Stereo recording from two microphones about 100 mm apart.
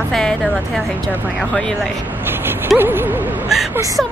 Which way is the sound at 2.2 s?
20° right (ahead or behind).